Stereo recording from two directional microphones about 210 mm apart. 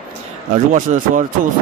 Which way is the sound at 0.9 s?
30° right (ahead or behind).